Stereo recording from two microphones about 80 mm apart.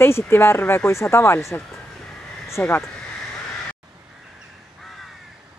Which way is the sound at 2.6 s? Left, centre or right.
Left.